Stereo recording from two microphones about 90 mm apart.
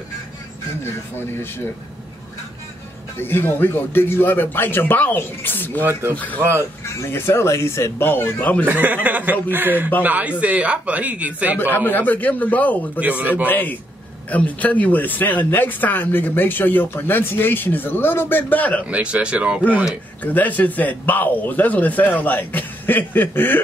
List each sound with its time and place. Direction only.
0.8 s speech: 25° left (ahead or behind)
3.2 s a man's voice: 25° left (ahead or behind)
6.4 s speech: 30° right (ahead or behind)
6.9 s speech: 30° left (ahead or behind)
8.6 s speech: 20° right (ahead or behind)
11.6 s speech: 20° left (ahead or behind)
13.0 s speech: 20° right (ahead or behind)
13.5 s speech: 20° left (ahead or behind)
18.9 s speech: 15° right (ahead or behind)
20.2 s speech: 20° left (ahead or behind)